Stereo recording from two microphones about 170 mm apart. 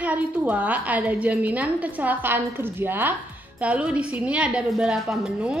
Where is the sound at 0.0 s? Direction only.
10° right (ahead or behind).